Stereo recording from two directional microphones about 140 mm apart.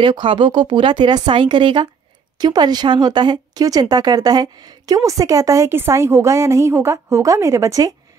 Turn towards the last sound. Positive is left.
turn(degrees=-25)  # may be behind; listen again after turning